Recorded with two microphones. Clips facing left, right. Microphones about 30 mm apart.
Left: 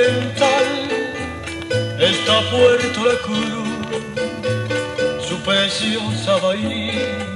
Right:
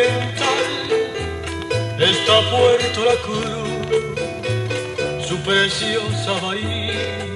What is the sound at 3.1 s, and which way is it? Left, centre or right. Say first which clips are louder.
Music: even; left.